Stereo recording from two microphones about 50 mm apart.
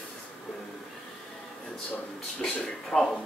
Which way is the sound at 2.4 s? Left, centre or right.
Centre.